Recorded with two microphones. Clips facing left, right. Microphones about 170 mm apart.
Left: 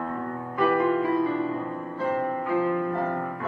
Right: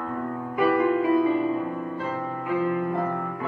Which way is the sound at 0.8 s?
15° right (ahead or behind).